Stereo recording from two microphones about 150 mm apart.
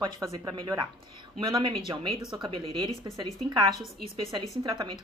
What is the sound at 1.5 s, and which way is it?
A woman's voice, 35° right (ahead or behind).